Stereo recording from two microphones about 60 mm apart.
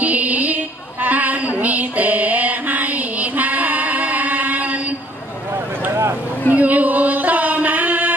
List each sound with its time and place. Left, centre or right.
0.0 s music: right
6.5 s music: right